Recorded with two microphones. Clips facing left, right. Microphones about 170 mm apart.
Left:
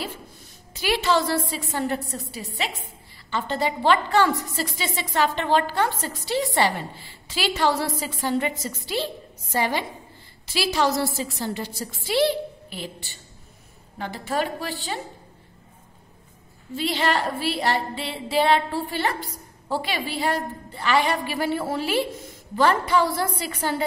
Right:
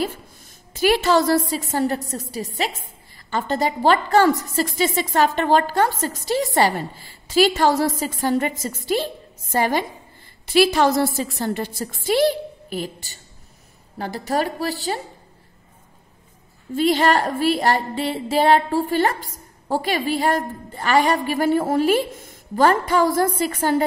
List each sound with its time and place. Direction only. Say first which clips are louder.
0.7 s a woman's voice: right 5 dB; 45° right (ahead or behind)
16.7 s a woman's voice: right 6 dB; 45° right (ahead or behind)